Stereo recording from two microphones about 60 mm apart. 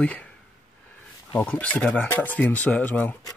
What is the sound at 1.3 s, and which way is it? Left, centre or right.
Speech, left.